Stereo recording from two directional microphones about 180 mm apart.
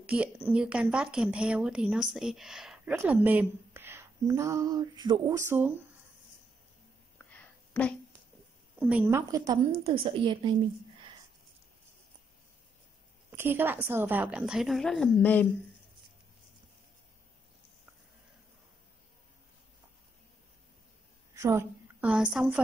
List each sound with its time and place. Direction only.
0.0 s a woman's voice: 10° right (ahead or behind)
7.2 s a sound: 10° left (ahead or behind)
8.7 s a woman's voice: 5° right (ahead or behind)
9.8 s a woman's voice: 30° right (ahead or behind)
13.3 s a woman's voice: 10° right (ahead or behind); by 15.4 s 5° left (ahead or behind)
21.4 s a woman's voice: 15° right (ahead or behind)